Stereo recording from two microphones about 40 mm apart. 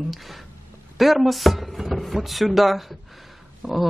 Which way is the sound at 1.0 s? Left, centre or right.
Centre.